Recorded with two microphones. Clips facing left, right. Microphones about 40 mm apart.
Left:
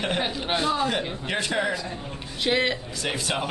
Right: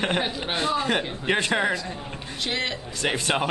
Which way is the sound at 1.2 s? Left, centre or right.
Right.